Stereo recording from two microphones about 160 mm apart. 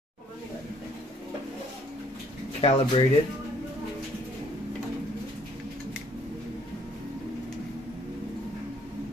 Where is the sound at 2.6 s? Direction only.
35° left (ahead or behind).